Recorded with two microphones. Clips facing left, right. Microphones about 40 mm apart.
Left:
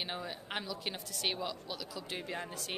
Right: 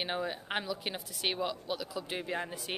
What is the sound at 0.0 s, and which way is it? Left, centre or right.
Speech, centre.